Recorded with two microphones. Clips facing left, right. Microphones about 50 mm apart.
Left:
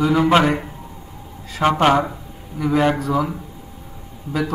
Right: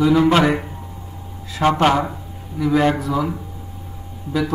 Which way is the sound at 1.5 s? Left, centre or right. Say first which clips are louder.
Even; centre.